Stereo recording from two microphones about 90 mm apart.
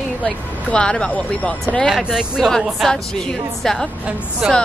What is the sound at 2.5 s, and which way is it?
A woman's voice, 5° left (ahead or behind).